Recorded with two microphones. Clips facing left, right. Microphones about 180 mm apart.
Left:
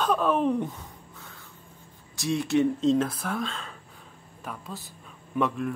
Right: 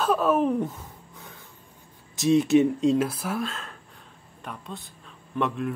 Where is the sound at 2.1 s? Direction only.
20° right (ahead or behind).